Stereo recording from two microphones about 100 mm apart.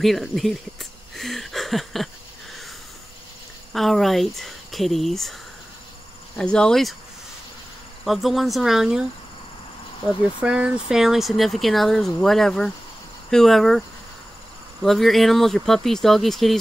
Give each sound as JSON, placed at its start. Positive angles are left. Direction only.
{"t": 0.0, "sound": "speech", "side_deg": 0}
{"t": 1.1, "sound": "a sound", "side_deg": 0}
{"t": 3.7, "sound": "speech", "side_deg": 0}
{"t": 6.3, "sound": "speech", "side_deg": 10}
{"t": 8.0, "sound": "speech", "side_deg": 0}
{"t": 10.4, "sound": "speech", "side_deg": -10}